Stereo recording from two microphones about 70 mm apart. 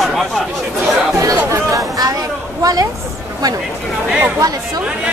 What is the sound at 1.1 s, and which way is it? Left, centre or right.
A woman's voice, right.